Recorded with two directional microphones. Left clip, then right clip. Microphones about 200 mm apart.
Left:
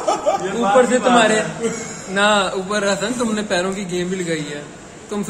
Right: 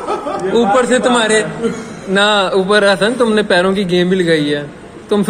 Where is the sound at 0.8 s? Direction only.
50° right (ahead or behind).